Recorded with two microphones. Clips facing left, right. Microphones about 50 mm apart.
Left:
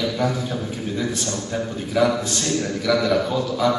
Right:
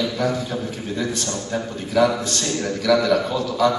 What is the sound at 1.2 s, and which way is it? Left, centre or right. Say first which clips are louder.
Speech: even; right.